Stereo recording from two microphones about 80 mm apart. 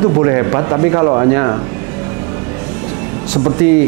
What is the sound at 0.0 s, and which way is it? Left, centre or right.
Speech, right.